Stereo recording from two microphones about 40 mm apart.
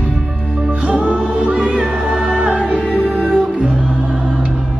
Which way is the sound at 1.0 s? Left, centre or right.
Right.